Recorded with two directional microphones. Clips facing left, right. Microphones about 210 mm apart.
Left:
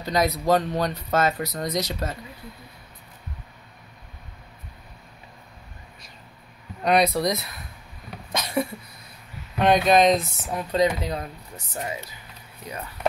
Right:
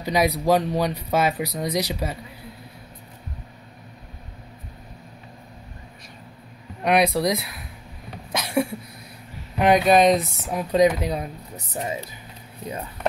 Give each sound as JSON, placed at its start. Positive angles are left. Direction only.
{"t": 0.0, "sound": "speech", "side_deg": -10}
{"t": 6.8, "sound": "speech", "side_deg": -10}
{"t": 8.3, "sound": "a sound", "side_deg": -5}
{"t": 9.6, "sound": "speech", "side_deg": -10}
{"t": 11.7, "sound": "speech", "side_deg": -25}